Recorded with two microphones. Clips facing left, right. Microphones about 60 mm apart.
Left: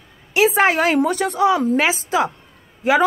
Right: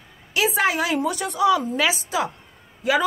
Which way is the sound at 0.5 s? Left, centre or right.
Left.